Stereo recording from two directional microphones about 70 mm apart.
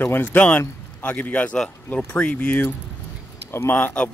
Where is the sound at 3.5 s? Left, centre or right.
Left.